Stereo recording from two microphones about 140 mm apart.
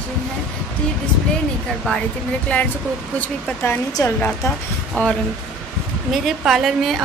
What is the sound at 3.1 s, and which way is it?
Speech, 15° left (ahead or behind).